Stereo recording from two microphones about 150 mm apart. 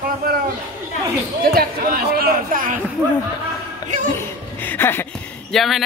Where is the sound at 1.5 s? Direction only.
90° right; by 2.8 s 65° right (ahead or behind).